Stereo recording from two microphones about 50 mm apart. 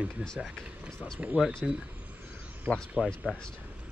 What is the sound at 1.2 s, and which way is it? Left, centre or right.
Speech, right.